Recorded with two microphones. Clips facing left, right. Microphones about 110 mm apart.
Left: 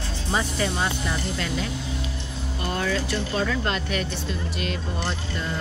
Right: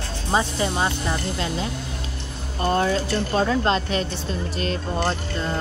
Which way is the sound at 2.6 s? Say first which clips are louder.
Right 6 dB; 35° right (ahead or behind).